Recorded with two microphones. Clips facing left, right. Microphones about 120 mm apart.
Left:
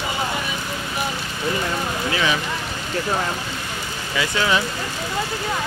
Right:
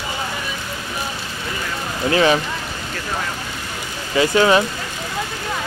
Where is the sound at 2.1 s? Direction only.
40° right (ahead or behind).